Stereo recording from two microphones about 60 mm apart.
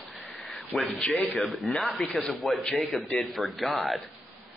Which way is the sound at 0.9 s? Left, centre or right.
Centre.